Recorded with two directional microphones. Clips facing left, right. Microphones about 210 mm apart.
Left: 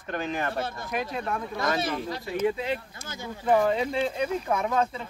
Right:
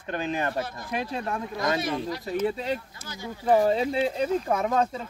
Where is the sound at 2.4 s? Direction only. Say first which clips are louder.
Left 3 dB; 35° right (ahead or behind).